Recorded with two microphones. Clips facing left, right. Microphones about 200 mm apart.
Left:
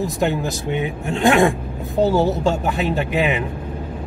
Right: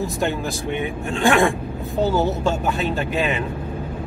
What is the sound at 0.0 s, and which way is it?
Speech, 20° left (ahead or behind).